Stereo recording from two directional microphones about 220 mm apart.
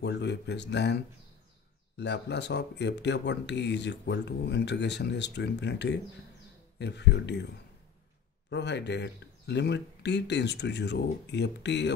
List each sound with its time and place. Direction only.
0.0 s speech: 50° left (ahead or behind)
8.5 s speech: 50° left (ahead or behind)